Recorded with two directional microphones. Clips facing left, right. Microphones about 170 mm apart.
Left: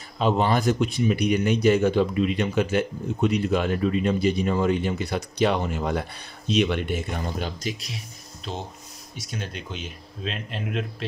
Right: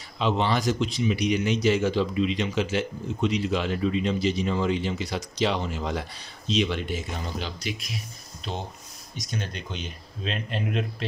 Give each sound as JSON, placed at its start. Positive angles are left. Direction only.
{"t": 0.2, "sound": "speech", "side_deg": 50}
{"t": 9.1, "sound": "speech", "side_deg": 5}